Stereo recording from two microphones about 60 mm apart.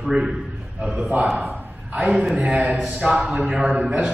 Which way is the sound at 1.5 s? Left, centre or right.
Centre.